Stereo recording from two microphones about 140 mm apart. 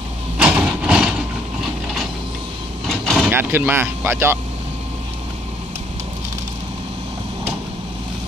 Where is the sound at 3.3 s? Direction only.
15° right (ahead or behind).